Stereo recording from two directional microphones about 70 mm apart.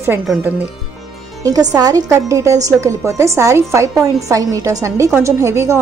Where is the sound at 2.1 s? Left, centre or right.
Right.